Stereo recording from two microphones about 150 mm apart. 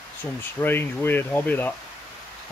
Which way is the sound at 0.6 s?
15° left (ahead or behind).